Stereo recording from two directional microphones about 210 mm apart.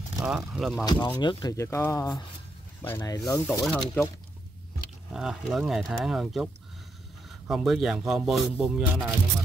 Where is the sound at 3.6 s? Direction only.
5° left (ahead or behind).